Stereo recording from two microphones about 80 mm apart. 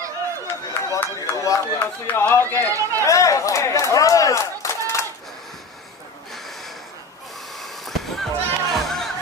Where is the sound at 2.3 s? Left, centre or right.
Left.